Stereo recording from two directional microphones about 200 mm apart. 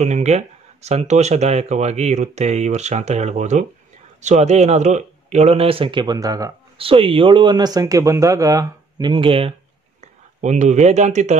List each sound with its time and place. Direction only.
0.0 s speech: 35° right (ahead or behind)